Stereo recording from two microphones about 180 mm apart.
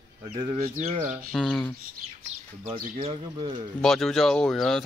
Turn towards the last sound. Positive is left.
turn(degrees=0)  # may be behind; listen again after turning